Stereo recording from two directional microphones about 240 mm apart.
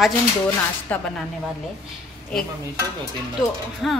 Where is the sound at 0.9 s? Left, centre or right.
Centre.